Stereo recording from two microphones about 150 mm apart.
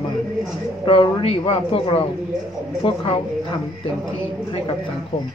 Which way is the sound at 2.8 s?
35° left (ahead or behind).